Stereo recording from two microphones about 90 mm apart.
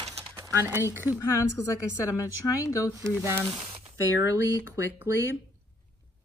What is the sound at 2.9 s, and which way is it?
Speech, 30° right (ahead or behind).